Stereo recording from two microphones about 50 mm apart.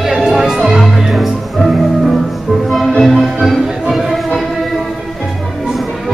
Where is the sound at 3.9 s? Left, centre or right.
Centre.